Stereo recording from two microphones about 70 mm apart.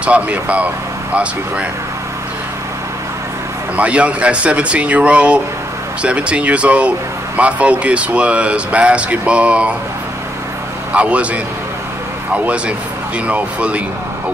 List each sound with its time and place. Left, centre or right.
0.0 s speech: centre
3.7 s speech: centre
10.9 s a man's voice: centre
13.3 s speech: centre